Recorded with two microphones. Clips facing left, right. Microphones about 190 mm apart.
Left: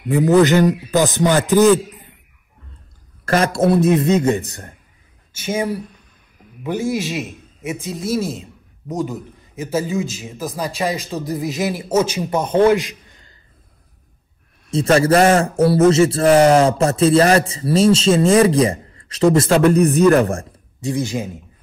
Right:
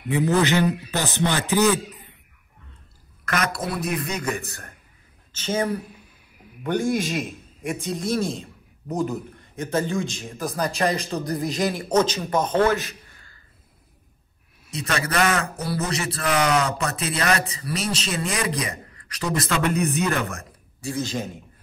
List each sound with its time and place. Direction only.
0.1 s a man's voice: 40° left (ahead or behind)
3.3 s a man's voice: 30° left (ahead or behind)
5.3 s a man's voice: 10° left (ahead or behind)
14.7 s a man's voice: 30° left (ahead or behind)
19.5 s a man's voice: 35° left (ahead or behind)
20.8 s a man's voice: 15° left (ahead or behind)